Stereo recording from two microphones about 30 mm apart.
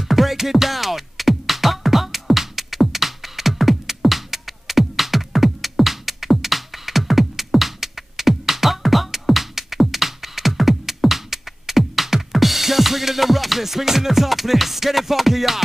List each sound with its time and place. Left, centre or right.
0.1 s music: centre